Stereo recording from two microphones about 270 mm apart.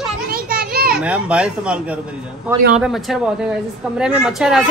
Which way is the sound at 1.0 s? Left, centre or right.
Centre.